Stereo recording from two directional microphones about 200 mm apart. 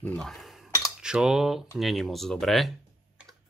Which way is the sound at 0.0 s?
5° left (ahead or behind).